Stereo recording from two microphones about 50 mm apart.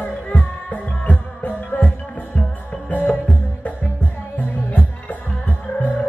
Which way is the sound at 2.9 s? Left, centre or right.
Left.